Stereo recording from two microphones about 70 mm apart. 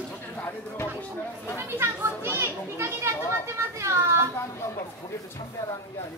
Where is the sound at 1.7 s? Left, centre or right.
Right.